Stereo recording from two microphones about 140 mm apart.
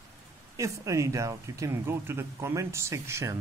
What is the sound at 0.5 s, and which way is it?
Speech, 20° right (ahead or behind).